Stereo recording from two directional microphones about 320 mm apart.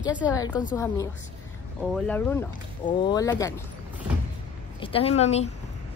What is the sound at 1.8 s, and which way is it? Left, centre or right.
Speech, centre.